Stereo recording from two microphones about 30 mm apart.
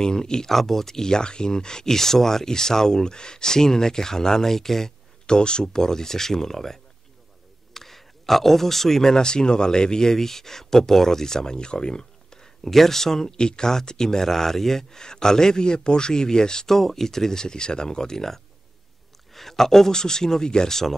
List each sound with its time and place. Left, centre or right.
0.0 s speech: left
0.5 s speech: centre
5.2 s speech: left
5.8 s speech: centre
7.7 s a sound: centre
9.1 s speech: left
12.6 s speech: centre
13.4 s speech: left
16.6 s speech: centre